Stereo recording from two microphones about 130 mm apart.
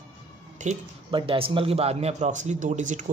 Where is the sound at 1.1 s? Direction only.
45° right (ahead or behind).